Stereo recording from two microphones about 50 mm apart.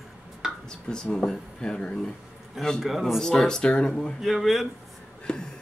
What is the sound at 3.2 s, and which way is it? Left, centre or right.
Speech, centre.